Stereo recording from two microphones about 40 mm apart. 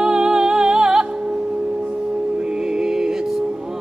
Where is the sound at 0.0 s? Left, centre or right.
Centre.